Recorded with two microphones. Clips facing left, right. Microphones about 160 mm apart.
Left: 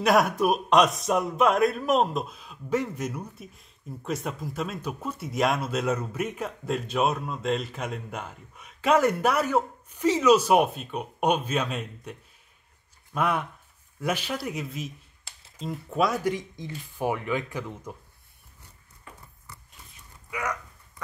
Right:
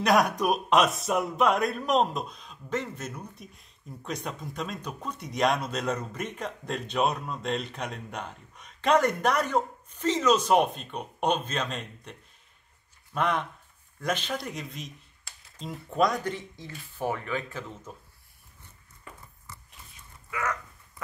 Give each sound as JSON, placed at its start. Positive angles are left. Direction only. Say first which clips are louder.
{"t": 0.0, "sound": "speech", "louder": "left 2 dB", "side_deg": 0}
{"t": 20.2, "sound": "dog", "louder": "even", "side_deg": 15}